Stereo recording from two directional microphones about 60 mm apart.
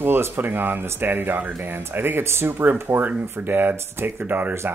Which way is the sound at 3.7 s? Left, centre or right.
Right.